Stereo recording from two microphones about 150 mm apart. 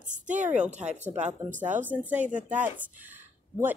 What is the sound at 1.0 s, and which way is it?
Speech, 50° right (ahead or behind).